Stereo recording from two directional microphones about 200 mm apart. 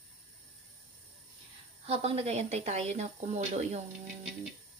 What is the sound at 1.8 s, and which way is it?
Speech, 30° right (ahead or behind).